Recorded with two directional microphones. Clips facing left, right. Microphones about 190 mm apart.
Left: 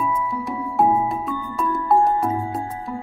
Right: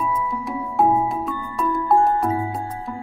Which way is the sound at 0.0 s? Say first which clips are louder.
Left 1 dB; centre (ahead or behind).